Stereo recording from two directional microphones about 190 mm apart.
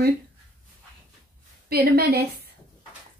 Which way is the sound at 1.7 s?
55° right (ahead or behind).